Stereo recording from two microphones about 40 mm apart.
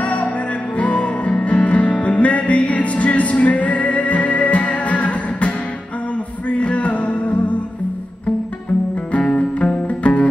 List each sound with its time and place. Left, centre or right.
0.0 s music: left
9.2 s music: left
9.6 s music: left